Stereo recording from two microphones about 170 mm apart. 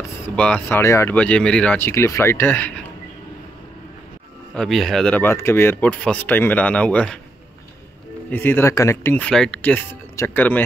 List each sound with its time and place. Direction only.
0.4 s speech: 10° left (ahead or behind)
4.6 s speech: centre (ahead or behind)
8.3 s speech: 10° left (ahead or behind)